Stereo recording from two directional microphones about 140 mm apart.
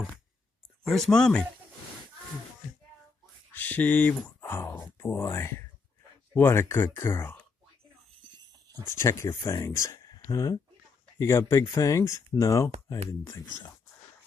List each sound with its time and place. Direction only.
0.8 s speech: centre (ahead or behind)
3.5 s speech: 10° left (ahead or behind)
8.2 s a sound: 25° right (ahead or behind)
8.8 s speech: 20° left (ahead or behind)